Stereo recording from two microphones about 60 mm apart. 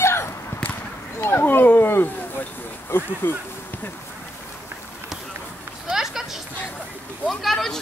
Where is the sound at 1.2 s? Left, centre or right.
Left.